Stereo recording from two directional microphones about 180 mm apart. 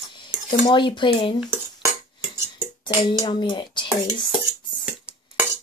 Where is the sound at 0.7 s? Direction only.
25° left (ahead or behind).